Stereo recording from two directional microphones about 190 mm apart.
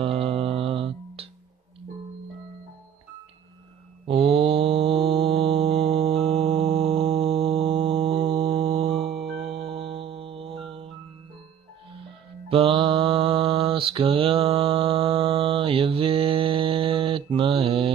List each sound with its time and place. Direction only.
0.0 s music: 30° right (ahead or behind)
4.1 s mantra: 30° right (ahead or behind)
9.2 s music: centre (ahead or behind)
9.5 s music: 30° right (ahead or behind)
12.4 s mantra: 30° right (ahead or behind)